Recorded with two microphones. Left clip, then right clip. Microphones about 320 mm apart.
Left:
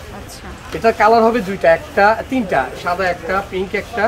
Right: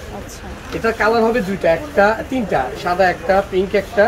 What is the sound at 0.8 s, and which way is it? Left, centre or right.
A man's voice, centre.